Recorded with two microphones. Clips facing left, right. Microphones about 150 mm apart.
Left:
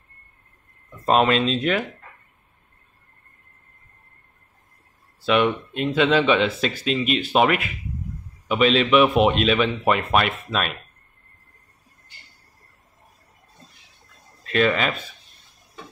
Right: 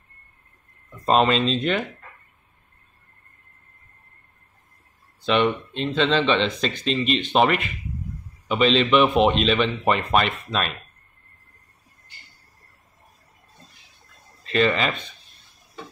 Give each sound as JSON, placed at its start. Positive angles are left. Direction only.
{"t": 1.0, "sound": "a man's voice", "side_deg": 5}
{"t": 5.2, "sound": "a man's voice", "side_deg": 5}
{"t": 14.4, "sound": "speech", "side_deg": 5}